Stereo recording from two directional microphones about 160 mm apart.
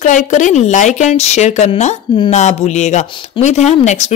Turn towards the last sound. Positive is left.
turn(degrees=45)  # may be behind; listen again after turning